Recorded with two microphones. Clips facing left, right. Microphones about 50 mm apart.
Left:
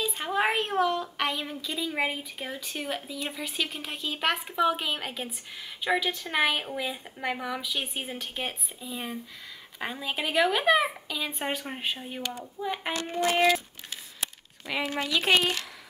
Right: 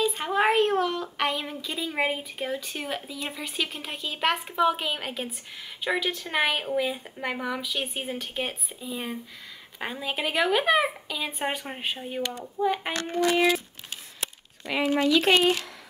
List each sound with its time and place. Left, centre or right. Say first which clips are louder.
0.0 s a sound: right 3 dB; centre
1.0 s a child's voice: right 2 dB; centre
12.9 s speech: right 2 dB; right
14.7 s speech: right 6 dB; centre